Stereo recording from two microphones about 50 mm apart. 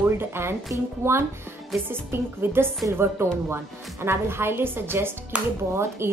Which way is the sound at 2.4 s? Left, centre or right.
Right.